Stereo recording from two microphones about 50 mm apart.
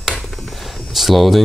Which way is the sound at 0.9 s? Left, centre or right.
Centre.